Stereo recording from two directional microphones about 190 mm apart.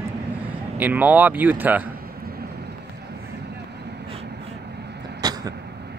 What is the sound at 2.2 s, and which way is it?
Vehicle, 55° right (ahead or behind).